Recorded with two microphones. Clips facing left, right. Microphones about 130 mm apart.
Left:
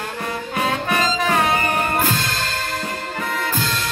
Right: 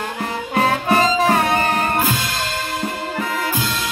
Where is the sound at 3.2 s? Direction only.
5° right (ahead or behind).